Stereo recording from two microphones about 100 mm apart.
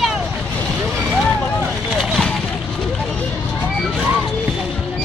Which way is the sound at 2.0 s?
5° left (ahead or behind).